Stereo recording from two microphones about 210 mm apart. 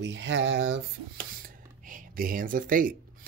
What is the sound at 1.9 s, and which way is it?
Speech, 40° right (ahead or behind).